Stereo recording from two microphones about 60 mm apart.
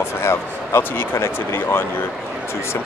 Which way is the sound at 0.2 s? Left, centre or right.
Left.